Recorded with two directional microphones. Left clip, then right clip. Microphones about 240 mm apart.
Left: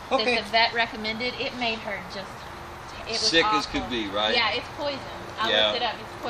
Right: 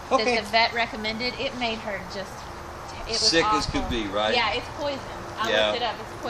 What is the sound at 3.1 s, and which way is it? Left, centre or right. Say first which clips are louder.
Speech: even; centre.